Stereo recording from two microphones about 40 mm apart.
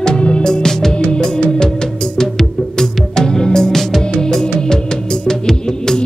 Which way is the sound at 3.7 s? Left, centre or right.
Centre.